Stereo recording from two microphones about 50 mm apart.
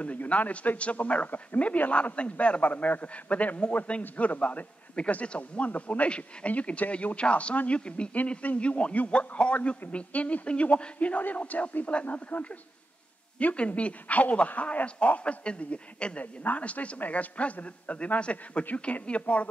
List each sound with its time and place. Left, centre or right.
0.0 s a man's voice: left